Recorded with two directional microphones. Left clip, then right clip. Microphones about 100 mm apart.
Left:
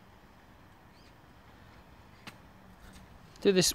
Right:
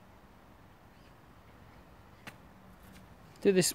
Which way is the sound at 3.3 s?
15° right (ahead or behind).